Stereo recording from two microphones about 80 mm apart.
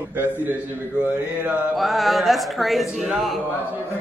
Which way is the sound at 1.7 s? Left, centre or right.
Centre.